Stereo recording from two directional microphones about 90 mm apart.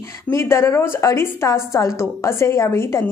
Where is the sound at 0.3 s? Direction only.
30° left (ahead or behind).